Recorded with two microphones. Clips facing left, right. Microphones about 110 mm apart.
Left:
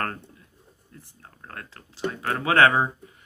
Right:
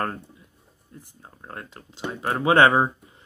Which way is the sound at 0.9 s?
20° right (ahead or behind).